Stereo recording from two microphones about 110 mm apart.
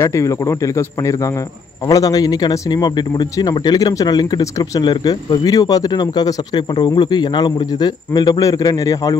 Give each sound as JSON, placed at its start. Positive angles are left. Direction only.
{"t": 0.0, "sound": "a man's voice", "side_deg": 30}